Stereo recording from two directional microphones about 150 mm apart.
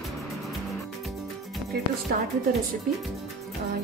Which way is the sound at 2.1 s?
90° right.